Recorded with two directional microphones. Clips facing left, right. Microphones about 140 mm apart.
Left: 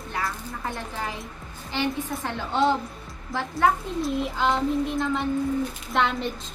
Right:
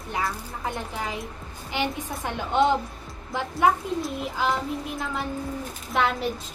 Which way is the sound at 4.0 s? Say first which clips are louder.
Left 3 dB; 5° right (ahead or behind).